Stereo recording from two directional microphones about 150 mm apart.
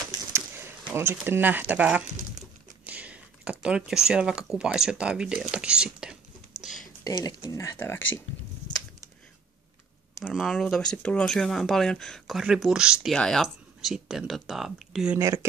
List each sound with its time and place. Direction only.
0.3 s a sound: 15° right (ahead or behind)
1.2 s speech: 15° right (ahead or behind)
7.1 s speech: 25° left (ahead or behind)
10.2 s speech: centre (ahead or behind)
15.1 s speech: 15° right (ahead or behind)